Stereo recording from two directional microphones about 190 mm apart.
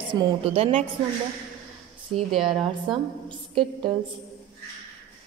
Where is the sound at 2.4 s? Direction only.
25° right (ahead or behind).